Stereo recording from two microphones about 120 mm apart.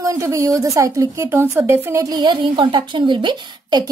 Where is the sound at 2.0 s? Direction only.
40° right (ahead or behind).